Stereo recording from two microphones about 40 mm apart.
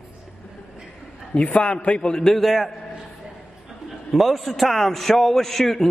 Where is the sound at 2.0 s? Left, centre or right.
Centre.